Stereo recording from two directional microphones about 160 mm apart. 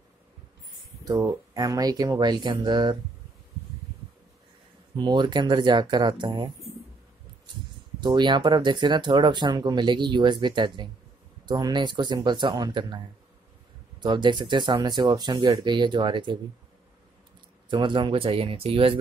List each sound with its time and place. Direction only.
1.0 s speech: 20° right (ahead or behind)
4.9 s speech: 30° right (ahead or behind)
8.0 s speech: 30° right (ahead or behind)
14.0 s speech: 30° right (ahead or behind)
17.6 s speech: 30° right (ahead or behind)